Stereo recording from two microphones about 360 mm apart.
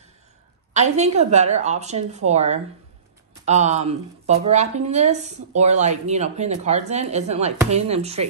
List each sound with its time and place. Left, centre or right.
0.7 s speech: centre